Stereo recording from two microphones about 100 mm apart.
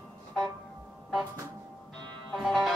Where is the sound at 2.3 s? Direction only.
Centre (ahead or behind).